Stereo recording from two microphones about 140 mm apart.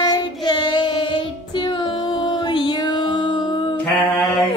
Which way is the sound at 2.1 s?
30° left (ahead or behind).